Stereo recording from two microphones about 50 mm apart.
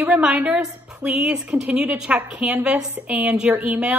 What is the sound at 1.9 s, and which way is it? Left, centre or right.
A woman's voice, centre.